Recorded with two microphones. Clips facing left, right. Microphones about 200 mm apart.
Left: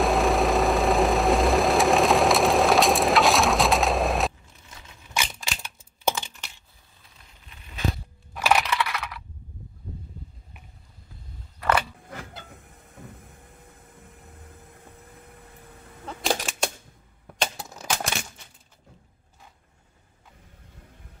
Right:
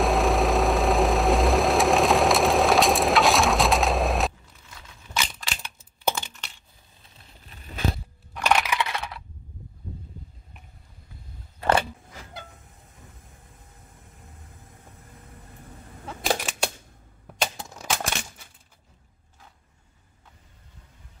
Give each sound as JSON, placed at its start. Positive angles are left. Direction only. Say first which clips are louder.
{"t": 0.0, "sound": "vehicle", "louder": "even", "side_deg": 0}
{"t": 4.6, "sound": "crushing", "louder": "right 1 dB", "side_deg": 20}
{"t": 7.4, "sound": "a sound", "louder": "right 5 dB", "side_deg": -40}
{"t": 8.4, "sound": "coin", "louder": "left 1 dB", "side_deg": 5}
{"t": 8.6, "sound": "computer keyboard", "louder": "even", "side_deg": -25}
{"t": 16.1, "sound": "typewriter", "louder": "even", "side_deg": -5}
{"t": 17.4, "sound": "a sound", "louder": "even", "side_deg": 0}